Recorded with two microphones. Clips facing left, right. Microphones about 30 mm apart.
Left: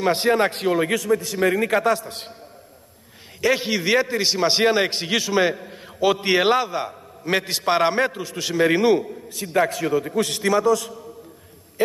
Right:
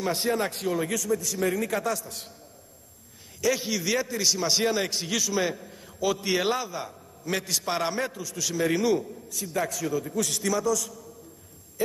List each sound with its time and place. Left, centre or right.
0.0 s a man's voice: left
3.3 s a man's voice: left